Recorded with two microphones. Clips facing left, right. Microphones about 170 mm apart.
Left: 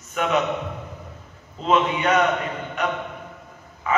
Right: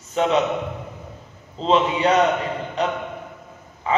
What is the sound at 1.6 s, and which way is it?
Speech, 30° right (ahead or behind).